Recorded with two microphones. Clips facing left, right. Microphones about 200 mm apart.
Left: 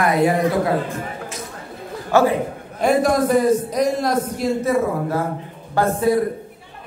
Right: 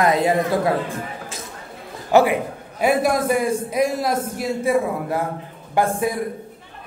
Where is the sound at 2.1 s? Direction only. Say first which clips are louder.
Right 1 dB; 15° right (ahead or behind).